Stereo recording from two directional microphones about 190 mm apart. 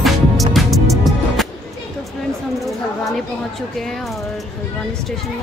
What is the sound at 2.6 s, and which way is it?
Speech, centre (ahead or behind).